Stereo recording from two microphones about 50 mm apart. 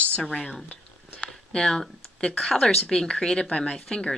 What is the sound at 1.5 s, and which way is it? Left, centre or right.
Speech, centre.